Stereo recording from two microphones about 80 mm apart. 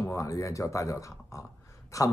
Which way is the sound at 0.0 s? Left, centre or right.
Left.